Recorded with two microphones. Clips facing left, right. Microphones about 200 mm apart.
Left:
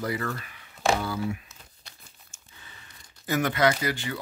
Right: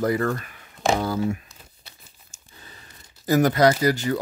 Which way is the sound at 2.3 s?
40° right (ahead or behind).